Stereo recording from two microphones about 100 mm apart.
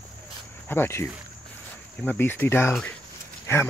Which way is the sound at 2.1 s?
20° left (ahead or behind).